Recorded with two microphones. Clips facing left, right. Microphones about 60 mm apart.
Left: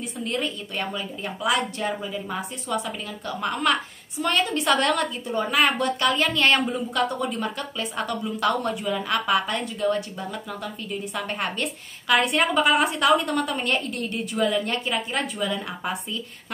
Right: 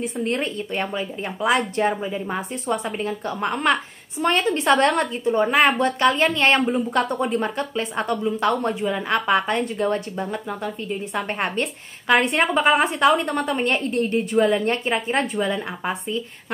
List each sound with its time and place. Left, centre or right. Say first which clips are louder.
0.0 s a woman's voice: right 4 dB; right